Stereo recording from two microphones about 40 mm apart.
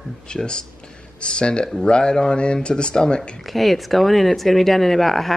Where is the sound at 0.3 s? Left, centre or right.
Left.